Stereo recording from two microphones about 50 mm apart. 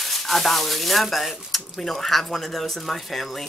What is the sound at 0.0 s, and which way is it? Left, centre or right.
Speech, centre.